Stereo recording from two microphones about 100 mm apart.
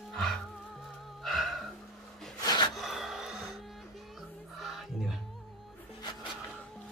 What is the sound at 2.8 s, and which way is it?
Music, 5° right (ahead or behind).